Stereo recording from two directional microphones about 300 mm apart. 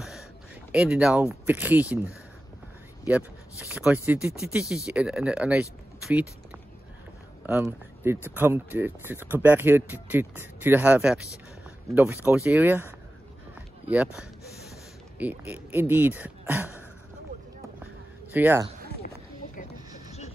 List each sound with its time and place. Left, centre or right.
0.7 s speech: centre
3.7 s speech: centre
7.4 s speech: centre
15.1 s speech: centre
18.3 s speech: centre
19.0 s a sound: left